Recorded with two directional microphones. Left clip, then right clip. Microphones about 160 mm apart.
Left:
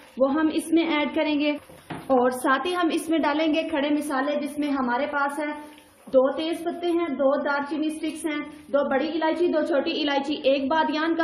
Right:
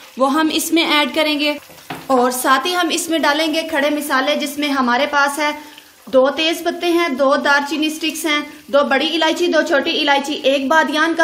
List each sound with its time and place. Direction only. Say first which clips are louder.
0.3 s a woman's voice: right 7 dB; 35° right (ahead or behind)
4.6 s a woman's voice: right 10 dB; 70° right (ahead or behind)
6.3 s a woman's voice: right 10 dB; 55° right (ahead or behind)